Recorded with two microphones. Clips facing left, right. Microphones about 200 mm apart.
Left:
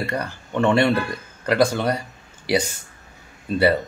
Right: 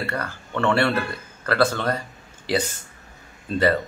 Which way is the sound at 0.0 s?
15° left (ahead or behind).